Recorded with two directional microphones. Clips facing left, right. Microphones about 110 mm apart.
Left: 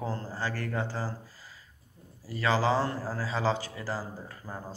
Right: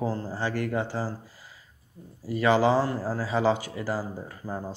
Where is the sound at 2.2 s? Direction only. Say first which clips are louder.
Right 5 dB; 20° right (ahead or behind).